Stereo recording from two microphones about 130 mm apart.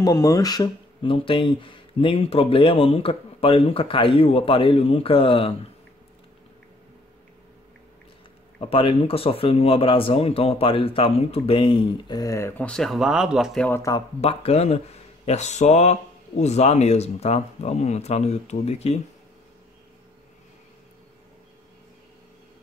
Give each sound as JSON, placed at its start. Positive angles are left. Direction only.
{"t": 0.0, "sound": "speech", "side_deg": 25}
{"t": 8.5, "sound": "speech", "side_deg": 45}
{"t": 12.2, "sound": "speech", "side_deg": 25}
{"t": 12.6, "sound": "speech", "side_deg": 5}
{"t": 13.6, "sound": "speech", "side_deg": 15}
{"t": 14.2, "sound": "speech", "side_deg": 55}